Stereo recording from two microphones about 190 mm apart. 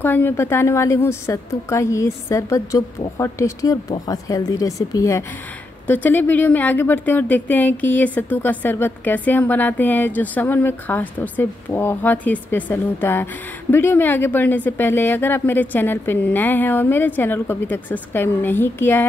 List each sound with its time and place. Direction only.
0.0 s a woman's voice: 10° left (ahead or behind)